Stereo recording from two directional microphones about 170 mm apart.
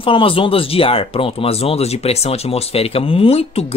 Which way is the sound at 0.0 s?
30° left (ahead or behind).